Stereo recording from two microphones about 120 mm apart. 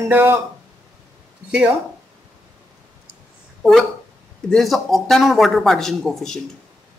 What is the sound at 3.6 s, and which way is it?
A man's voice, centre (ahead or behind).